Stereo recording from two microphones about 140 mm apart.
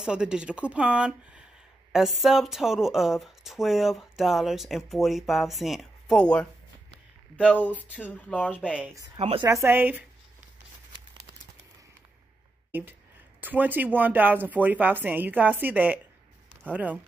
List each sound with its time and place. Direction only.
0.0 s speech: 5° right (ahead or behind); by 7.7 s 10° left (ahead or behind)
7.7 s speech: 10° right (ahead or behind)
8.1 s speech: 10° left (ahead or behind)
8.9 s speech: 25° right (ahead or behind)
13.4 s speech: 15° right (ahead or behind)